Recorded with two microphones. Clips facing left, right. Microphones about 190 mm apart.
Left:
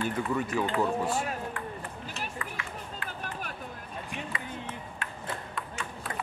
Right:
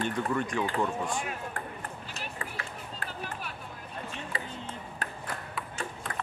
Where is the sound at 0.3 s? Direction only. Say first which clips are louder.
Left 1 dB; 5° left (ahead or behind).